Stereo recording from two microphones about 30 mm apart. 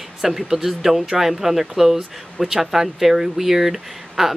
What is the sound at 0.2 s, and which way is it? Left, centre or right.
Speech, centre.